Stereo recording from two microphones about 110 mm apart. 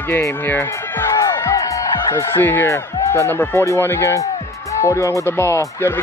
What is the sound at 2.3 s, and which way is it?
Speech, 20° left (ahead or behind).